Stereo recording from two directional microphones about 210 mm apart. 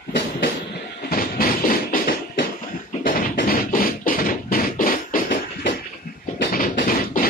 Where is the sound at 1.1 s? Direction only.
45° left (ahead or behind).